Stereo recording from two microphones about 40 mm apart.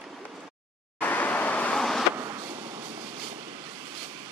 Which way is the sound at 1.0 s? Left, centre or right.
Left.